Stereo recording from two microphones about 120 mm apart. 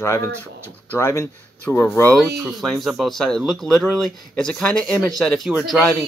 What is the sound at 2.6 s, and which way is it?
Speech, centre (ahead or behind).